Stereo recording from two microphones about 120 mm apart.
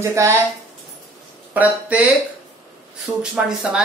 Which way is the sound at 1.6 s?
10° right (ahead or behind).